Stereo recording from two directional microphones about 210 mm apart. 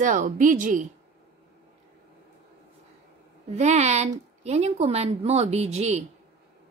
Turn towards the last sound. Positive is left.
turn(degrees=-30)  # may be behind; listen again after turning